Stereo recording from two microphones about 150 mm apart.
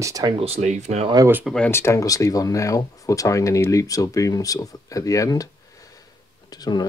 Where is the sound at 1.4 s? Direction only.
5° left (ahead or behind).